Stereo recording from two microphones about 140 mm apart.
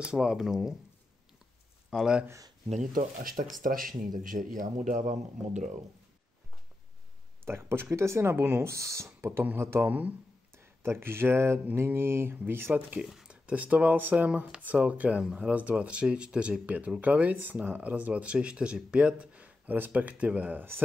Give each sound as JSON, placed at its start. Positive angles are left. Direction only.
{"t": 0.0, "sound": "speech", "side_deg": -5}
{"t": 1.9, "sound": "speech", "side_deg": -5}
{"t": 2.2, "sound": "speech", "side_deg": -25}
{"t": 2.7, "sound": "speech", "side_deg": -65}
{"t": 7.4, "sound": "speech", "side_deg": -15}